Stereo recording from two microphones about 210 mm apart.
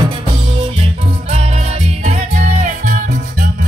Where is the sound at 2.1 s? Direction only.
35° right (ahead or behind).